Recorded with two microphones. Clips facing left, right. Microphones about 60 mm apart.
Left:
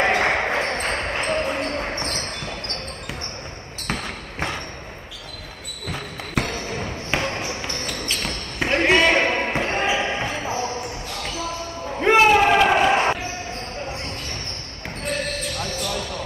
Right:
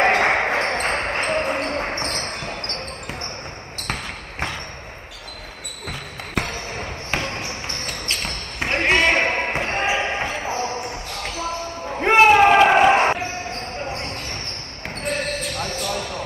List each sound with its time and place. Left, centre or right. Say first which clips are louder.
0.0 s basketball bounce: right 2 dB; right
6.3 s basketball bounce: left 1 dB; centre
6.7 s basketball bounce: left 1 dB; right
7.2 s basketball bounce: left 2 dB; centre
7.4 s basketball bounce: left 1 dB; right
8.3 s basketball bounce: left 3 dB; right
12.2 s a sound: right 4 dB; right
15.0 s basketball bounce: right 1 dB; right